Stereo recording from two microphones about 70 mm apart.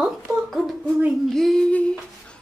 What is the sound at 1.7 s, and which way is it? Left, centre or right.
Speech, centre.